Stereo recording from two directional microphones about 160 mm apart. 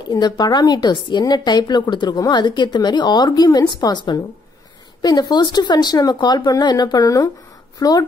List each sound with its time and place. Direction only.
0.1 s a woman's voice: 25° left (ahead or behind)